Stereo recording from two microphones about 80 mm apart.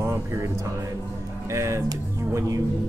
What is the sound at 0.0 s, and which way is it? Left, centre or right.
Music, right.